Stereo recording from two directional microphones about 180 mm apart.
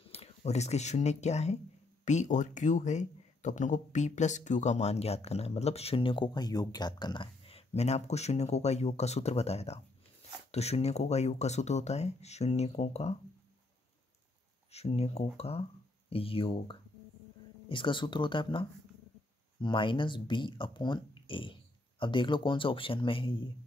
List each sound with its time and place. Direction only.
0.0 s speech: 35° left (ahead or behind)
14.7 s speech: 35° left (ahead or behind)